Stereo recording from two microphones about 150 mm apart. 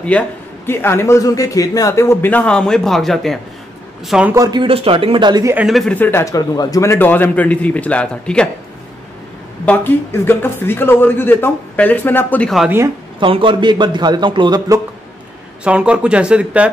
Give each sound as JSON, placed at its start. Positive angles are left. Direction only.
{"t": 0.1, "sound": "speech", "side_deg": 10}
{"t": 4.3, "sound": "a man's voice", "side_deg": -25}
{"t": 5.7, "sound": "speech", "side_deg": 0}
{"t": 5.9, "sound": "speech", "side_deg": 15}
{"t": 9.7, "sound": "speech", "side_deg": 15}
{"t": 12.5, "sound": "speech", "side_deg": -15}
{"t": 13.2, "sound": "a man's voice", "side_deg": -35}
{"t": 15.6, "sound": "speech", "side_deg": -5}